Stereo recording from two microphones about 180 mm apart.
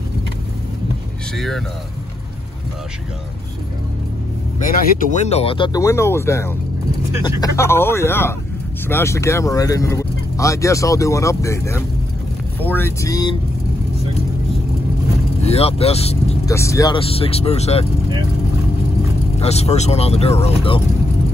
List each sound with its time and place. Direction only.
1.3 s speech: centre (ahead or behind)
4.6 s speech: 40° left (ahead or behind)
5.8 s speech: 15° left (ahead or behind)
15.4 s speech: 35° left (ahead or behind)
16.4 s speech: 15° left (ahead or behind)
17.1 s speech: 35° left (ahead or behind)
19.4 s speech: 35° left (ahead or behind)